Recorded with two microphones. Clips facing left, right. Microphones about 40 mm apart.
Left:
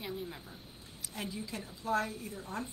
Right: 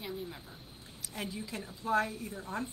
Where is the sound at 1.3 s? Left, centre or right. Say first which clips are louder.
Right 1 dB; right.